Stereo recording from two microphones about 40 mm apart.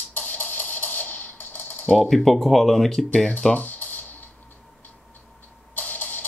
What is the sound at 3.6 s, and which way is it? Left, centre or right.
Music, left.